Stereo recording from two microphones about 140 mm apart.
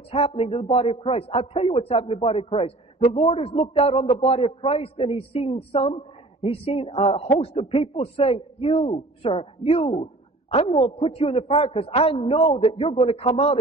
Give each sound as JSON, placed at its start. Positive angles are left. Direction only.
{"t": 0.1, "sound": "a man's voice", "side_deg": 45}